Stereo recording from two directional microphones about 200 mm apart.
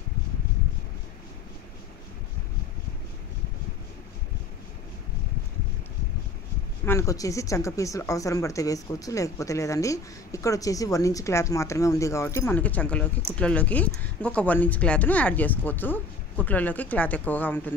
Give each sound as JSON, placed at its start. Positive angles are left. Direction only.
{"t": 6.9, "sound": "speech", "side_deg": 15}